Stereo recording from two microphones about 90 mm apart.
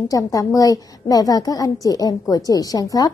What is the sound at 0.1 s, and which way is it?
A woman's voice, 40° left (ahead or behind).